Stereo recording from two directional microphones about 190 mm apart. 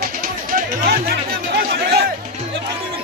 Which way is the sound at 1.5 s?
55° right (ahead or behind).